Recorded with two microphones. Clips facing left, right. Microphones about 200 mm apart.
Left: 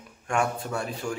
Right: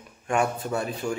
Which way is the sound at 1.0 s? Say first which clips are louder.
Right 2 dB; 15° right (ahead or behind).